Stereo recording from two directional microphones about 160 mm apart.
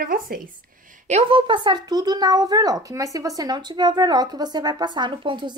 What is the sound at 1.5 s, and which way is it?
Speech, 30° right (ahead or behind).